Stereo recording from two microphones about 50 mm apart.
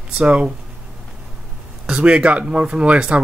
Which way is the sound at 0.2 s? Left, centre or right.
Right.